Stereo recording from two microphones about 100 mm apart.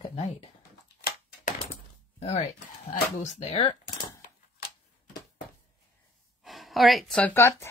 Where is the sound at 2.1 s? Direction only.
90° left.